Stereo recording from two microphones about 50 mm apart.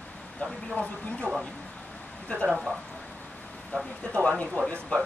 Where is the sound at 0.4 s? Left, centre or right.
Left.